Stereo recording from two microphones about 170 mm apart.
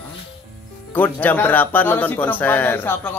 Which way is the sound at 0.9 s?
10° left (ahead or behind).